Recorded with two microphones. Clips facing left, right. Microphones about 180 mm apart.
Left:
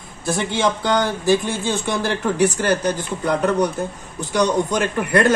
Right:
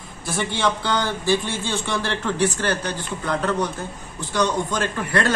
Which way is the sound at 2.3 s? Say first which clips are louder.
Left 4 dB; 10° left (ahead or behind).